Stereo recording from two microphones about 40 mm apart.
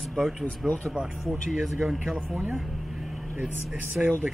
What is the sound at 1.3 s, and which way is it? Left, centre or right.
Speech, centre.